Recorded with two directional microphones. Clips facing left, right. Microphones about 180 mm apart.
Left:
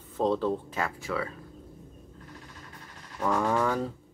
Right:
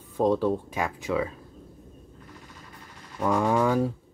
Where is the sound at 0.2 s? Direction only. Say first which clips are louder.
Right 3 dB; 15° right (ahead or behind).